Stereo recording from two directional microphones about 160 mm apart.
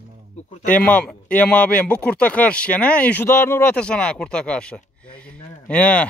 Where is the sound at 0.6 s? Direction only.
55° left (ahead or behind).